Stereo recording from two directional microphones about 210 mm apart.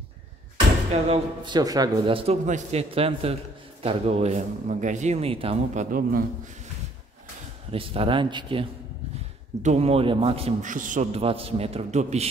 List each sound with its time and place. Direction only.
1.0 s a man's voice: 25° right (ahead or behind)
5.9 s a man's voice: 45° right (ahead or behind)
7.7 s a man's voice: 25° right (ahead or behind)